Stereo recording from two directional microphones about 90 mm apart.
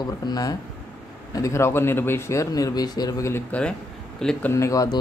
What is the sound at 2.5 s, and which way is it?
Speech, 45° left (ahead or behind).